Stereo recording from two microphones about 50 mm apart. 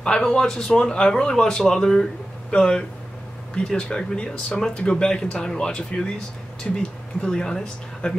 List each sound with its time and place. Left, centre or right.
0.0 s speech: centre